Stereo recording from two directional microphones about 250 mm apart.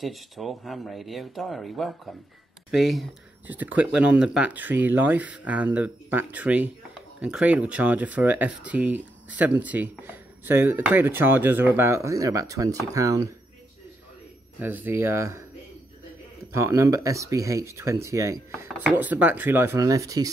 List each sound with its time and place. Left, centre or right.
0.0 s speech: centre
14.6 s speech: centre
16.5 s speech: centre